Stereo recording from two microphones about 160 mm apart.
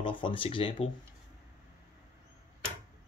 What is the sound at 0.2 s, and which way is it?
Speech, 35° left (ahead or behind).